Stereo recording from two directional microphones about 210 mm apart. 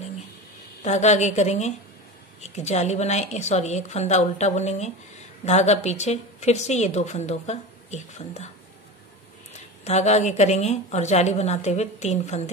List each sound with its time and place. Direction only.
0.8 s a woman's voice: 35° left (ahead or behind)
9.8 s a woman's voice: 30° left (ahead or behind)